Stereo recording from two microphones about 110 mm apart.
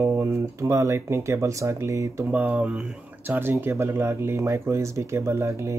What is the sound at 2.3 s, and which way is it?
Speech, 15° right (ahead or behind).